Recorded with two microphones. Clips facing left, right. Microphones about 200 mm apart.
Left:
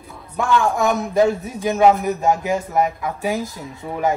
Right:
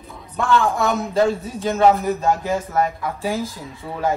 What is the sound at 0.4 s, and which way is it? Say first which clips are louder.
A man's voice: left 1 dB; 15° left (ahead or behind).